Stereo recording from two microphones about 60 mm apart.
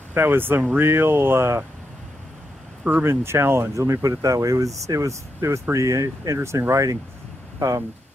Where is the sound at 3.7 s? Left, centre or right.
Right.